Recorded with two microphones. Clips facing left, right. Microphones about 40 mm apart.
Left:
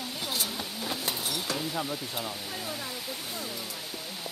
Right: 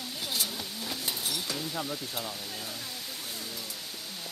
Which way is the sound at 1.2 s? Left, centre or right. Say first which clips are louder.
Left 2 dB; centre.